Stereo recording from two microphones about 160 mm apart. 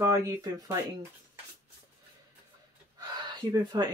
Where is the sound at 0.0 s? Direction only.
15° right (ahead or behind).